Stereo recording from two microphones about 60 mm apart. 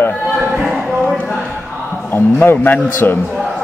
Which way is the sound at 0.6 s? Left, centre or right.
Centre.